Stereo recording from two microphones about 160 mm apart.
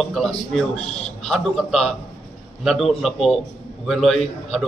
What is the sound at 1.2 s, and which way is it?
A man's voice, centre (ahead or behind).